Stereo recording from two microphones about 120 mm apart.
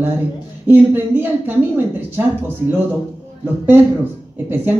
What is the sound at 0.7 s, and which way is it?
Speech, 15° right (ahead or behind).